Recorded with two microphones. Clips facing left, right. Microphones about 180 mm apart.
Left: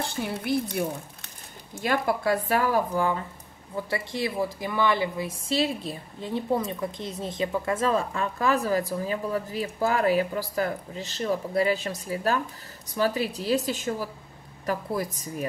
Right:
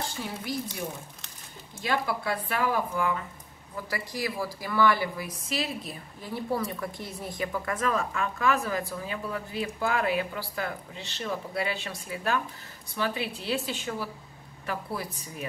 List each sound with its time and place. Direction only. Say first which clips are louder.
0.4 s speech: left 8 dB; 60° left (ahead or behind)
1.8 s a woman's voice: left 4 dB; 45° left (ahead or behind)